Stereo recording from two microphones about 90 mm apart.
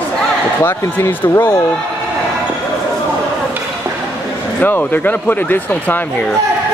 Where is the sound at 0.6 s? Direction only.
20° left (ahead or behind).